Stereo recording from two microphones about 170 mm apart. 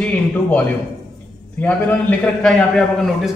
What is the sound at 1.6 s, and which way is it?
A man's voice, 10° left (ahead or behind).